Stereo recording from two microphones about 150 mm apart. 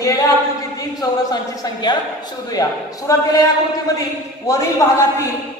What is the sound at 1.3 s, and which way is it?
Speech, 30° left (ahead or behind).